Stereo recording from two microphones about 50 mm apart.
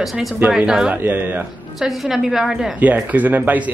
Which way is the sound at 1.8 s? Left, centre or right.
Centre.